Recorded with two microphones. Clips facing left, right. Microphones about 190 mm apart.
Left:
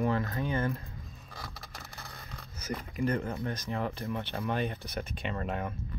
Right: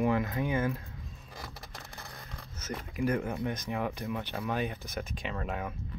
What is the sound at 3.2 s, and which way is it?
Speech, 15° right (ahead or behind).